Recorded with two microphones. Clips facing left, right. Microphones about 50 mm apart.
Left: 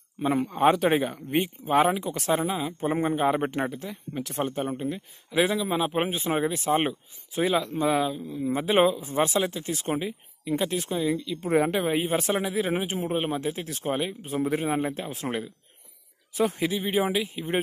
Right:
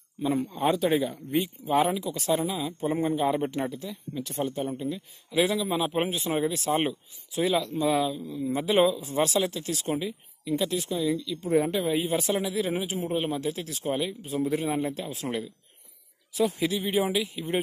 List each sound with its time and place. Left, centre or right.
0.3 s a man's voice: left
1.1 s speech: left
2.0 s speech: left
5.3 s a man's voice: centre
8.7 s speech: left
9.1 s speech: left
11.4 s a man's voice: left
11.9 s speech: left
13.7 s speech: left
13.9 s speech: left
16.3 s speech: left
16.6 s a man's voice: centre